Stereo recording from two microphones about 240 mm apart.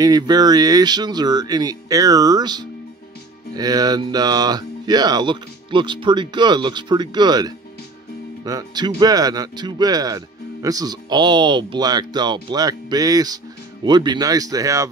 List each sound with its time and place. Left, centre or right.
0.0 s speech: centre